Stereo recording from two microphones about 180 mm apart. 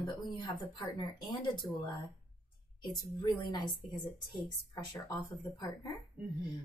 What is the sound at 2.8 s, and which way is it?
Speech, 25° left (ahead or behind).